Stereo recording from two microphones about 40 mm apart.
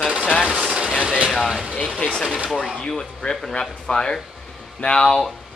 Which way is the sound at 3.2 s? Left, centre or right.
Centre.